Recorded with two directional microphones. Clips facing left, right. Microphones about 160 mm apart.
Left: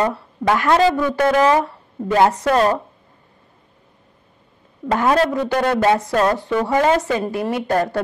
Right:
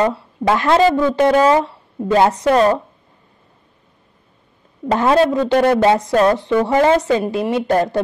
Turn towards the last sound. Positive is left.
turn(degrees=-20)  # may be behind; listen again after turning